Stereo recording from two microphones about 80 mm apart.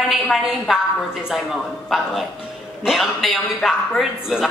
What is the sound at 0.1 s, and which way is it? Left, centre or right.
A woman's voice, centre.